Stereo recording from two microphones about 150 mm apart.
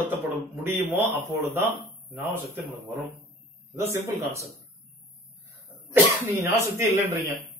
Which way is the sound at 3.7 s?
20° right (ahead or behind).